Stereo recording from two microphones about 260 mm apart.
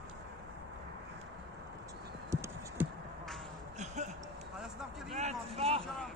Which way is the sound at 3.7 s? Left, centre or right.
Right.